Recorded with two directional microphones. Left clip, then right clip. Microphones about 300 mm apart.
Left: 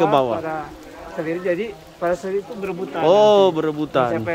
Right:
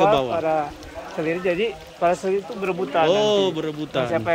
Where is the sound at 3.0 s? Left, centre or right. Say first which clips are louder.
Left 8 dB; centre.